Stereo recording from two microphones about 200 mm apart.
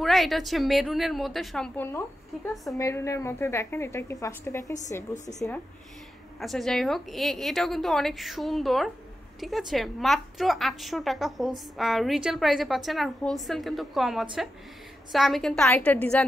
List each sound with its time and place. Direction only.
0.0 s a woman's voice: centre (ahead or behind)
1.9 s a woman's voice: 10° left (ahead or behind)
2.5 s a woman's voice: centre (ahead or behind)
2.8 s a woman's voice: 15° left (ahead or behind)
5.1 s a woman's voice: 35° left (ahead or behind)
6.4 s a woman's voice: centre (ahead or behind)